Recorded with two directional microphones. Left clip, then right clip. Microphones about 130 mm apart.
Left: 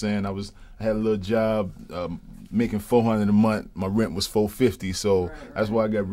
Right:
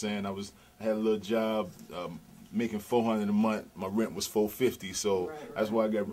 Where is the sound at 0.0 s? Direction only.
30° left (ahead or behind).